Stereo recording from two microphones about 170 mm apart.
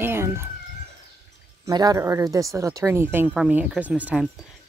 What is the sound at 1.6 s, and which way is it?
Speech, 20° right (ahead or behind).